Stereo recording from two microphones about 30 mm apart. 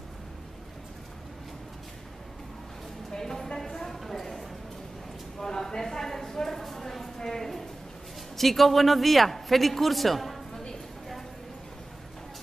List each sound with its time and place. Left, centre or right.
3.1 s a sound: centre
5.4 s clip-clop: centre
8.4 s a man's voice: centre